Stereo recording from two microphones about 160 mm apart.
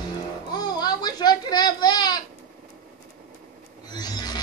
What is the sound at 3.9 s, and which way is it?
Wild animals, 25° left (ahead or behind).